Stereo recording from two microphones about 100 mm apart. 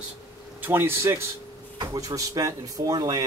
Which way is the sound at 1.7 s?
35° right (ahead or behind).